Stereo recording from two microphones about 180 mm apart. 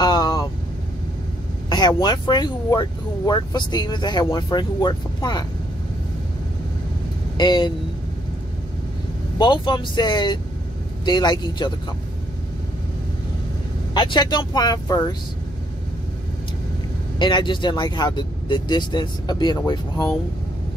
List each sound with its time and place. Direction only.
0.0 s vehicle: 20° left (ahead or behind)
1.7 s speech: 25° left (ahead or behind)
7.3 s speech: 25° left (ahead or behind)
9.4 s speech: 25° left (ahead or behind)
13.9 s speech: 25° left (ahead or behind)
17.2 s speech: 25° left (ahead or behind)